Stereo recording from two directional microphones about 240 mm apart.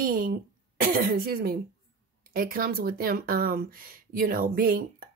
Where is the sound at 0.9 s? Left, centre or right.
Right.